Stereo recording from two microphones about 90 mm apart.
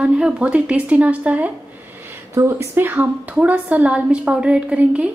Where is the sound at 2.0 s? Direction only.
30° right (ahead or behind).